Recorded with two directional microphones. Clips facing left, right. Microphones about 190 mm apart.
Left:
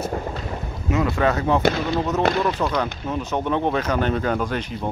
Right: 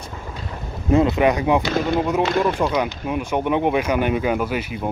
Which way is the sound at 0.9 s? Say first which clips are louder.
Right 4 dB; 20° right (ahead or behind).